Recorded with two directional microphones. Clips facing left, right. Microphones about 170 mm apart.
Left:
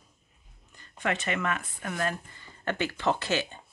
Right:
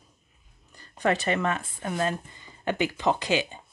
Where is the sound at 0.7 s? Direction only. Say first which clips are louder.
Right 6 dB; 35° right (ahead or behind).